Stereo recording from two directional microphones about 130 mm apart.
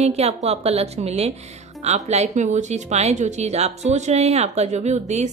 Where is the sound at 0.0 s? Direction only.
55° right (ahead or behind).